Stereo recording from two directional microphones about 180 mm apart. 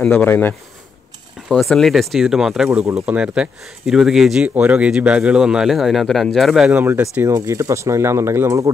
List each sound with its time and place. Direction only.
0.0 s speech: 10° left (ahead or behind); by 8.6 s 15° right (ahead or behind)